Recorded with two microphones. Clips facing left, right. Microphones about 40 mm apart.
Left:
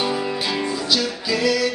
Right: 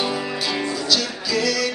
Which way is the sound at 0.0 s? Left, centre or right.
Centre.